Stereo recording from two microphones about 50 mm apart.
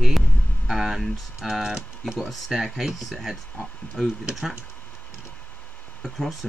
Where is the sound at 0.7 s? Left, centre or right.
Centre.